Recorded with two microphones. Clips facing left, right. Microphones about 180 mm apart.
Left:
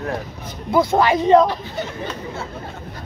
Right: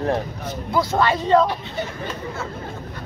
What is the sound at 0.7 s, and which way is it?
Speech, 20° left (ahead or behind).